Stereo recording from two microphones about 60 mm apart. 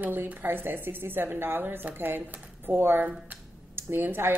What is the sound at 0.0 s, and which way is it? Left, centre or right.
A woman's voice, right.